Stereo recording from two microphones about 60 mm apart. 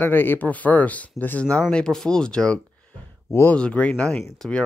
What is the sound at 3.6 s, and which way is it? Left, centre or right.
Speech, left.